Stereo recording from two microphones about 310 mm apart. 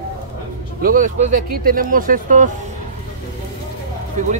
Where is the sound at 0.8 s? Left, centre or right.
Right.